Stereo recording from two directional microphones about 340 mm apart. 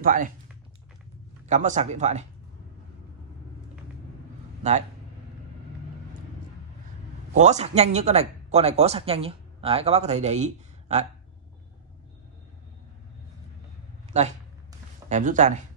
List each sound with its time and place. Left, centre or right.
0.0 s speech: right
1.4 s speech: right
4.6 s speech: right
7.3 s speech: centre
14.1 s a sound: centre